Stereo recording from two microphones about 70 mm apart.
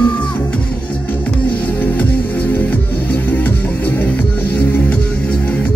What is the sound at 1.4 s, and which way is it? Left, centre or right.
Music, left.